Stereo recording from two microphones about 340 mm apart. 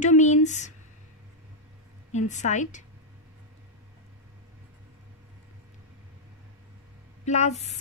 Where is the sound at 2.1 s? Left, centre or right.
Left.